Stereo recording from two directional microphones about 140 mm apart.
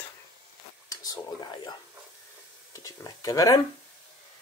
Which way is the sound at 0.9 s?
30° left (ahead or behind).